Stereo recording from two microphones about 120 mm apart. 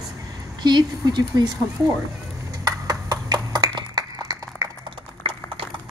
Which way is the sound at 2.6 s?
35° right (ahead or behind).